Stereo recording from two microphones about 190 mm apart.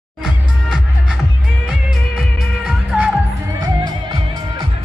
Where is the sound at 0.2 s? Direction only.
5° right (ahead or behind).